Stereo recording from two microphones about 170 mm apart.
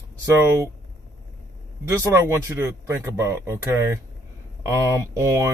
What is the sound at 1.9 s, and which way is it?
Speech, 15° right (ahead or behind).